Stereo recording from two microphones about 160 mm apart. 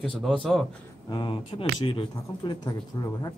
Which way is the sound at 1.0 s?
30° left (ahead or behind).